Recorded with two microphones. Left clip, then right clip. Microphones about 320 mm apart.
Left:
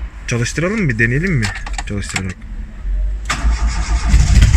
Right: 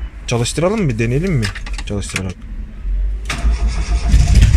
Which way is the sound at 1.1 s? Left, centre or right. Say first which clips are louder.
Left 1 dB; right.